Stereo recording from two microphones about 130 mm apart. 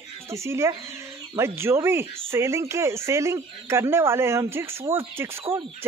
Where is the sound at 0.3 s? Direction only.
20° right (ahead or behind).